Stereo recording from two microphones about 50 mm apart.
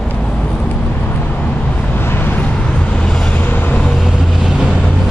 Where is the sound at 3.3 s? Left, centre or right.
Left.